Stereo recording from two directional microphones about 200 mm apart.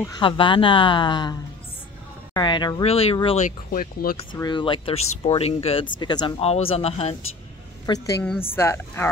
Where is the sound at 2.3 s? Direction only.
20° left (ahead or behind).